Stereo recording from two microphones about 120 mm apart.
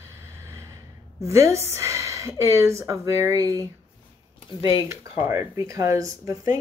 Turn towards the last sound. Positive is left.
turn(degrees=-30)  # may be behind; listen again after turning